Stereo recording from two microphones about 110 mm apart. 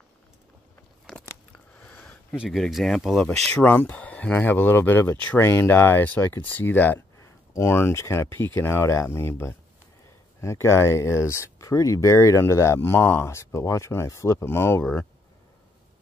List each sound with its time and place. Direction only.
1.8 s a sound: 10° left (ahead or behind)
2.3 s speech: 5° right (ahead or behind)
3.5 s speech: 15° left (ahead or behind)